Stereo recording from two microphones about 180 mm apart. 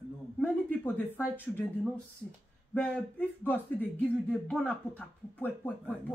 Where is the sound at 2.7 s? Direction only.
10° left (ahead or behind).